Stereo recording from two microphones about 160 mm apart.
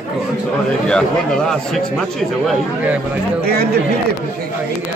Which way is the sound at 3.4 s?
75° right (ahead or behind).